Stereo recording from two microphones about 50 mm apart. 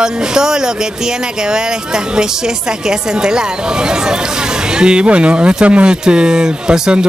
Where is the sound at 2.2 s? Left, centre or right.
Centre.